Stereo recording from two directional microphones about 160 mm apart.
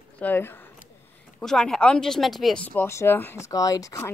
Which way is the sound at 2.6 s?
15° left (ahead or behind).